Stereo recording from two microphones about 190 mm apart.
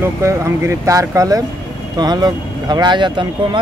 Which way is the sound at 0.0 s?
15° right (ahead or behind).